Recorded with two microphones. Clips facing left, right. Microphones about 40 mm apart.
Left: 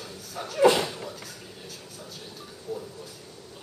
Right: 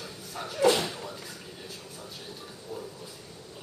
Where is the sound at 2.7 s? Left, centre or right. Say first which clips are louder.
Left 5 dB; right.